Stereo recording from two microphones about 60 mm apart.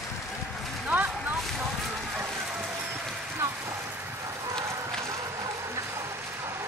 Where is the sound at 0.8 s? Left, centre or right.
Right.